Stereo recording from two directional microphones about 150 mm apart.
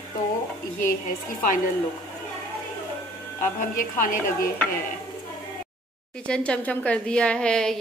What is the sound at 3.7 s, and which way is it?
Speech, 65° left (ahead or behind).